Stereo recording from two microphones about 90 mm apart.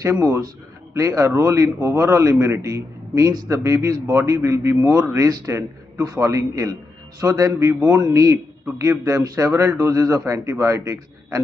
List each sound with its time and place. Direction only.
0.0 s a man's voice: 35° right (ahead or behind)